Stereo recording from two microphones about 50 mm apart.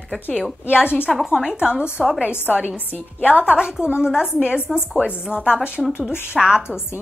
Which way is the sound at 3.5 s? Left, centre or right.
Centre.